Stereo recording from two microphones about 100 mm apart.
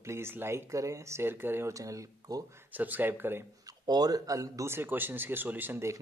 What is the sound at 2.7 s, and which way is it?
Speech, 15° right (ahead or behind).